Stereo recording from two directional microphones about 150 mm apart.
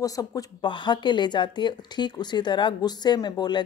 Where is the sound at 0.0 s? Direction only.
25° left (ahead or behind).